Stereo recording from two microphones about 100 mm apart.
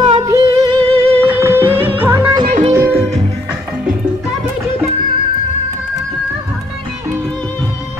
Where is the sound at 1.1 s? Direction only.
25° right (ahead or behind).